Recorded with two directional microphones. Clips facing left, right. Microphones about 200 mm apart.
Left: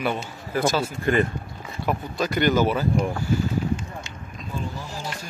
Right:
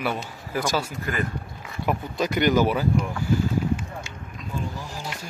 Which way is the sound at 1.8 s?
15° right (ahead or behind).